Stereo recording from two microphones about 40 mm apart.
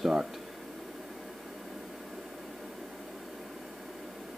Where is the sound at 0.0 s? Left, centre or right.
Centre.